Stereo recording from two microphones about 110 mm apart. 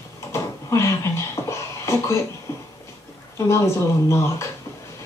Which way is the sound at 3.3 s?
25° left (ahead or behind).